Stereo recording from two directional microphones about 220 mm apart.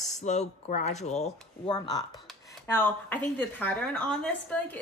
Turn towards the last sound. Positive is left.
turn(degrees=5)  # may be behind; listen again after turning